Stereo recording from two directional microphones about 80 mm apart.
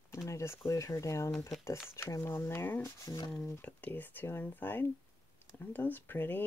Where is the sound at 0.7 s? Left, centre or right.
Left.